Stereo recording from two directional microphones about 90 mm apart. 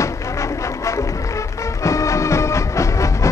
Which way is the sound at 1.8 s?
35° left (ahead or behind).